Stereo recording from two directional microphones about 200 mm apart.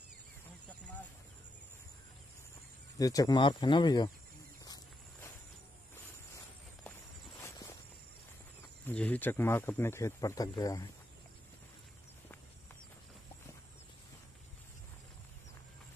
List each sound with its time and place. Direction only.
3.0 s speech: 15° left (ahead or behind)
7.4 s walk: 15° left (ahead or behind)
8.8 s speech: 5° left (ahead or behind)